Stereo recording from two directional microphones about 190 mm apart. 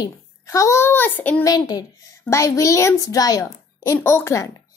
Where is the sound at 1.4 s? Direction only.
20° left (ahead or behind).